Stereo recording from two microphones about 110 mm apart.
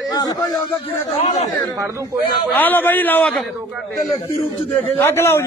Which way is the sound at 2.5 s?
15° left (ahead or behind).